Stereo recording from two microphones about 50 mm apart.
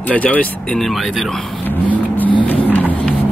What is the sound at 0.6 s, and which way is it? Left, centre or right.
Speech, centre.